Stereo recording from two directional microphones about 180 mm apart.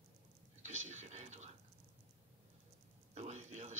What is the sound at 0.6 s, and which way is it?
Speech, 40° right (ahead or behind).